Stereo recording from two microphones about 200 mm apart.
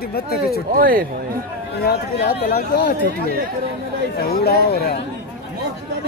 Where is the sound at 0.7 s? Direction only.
45° right (ahead or behind).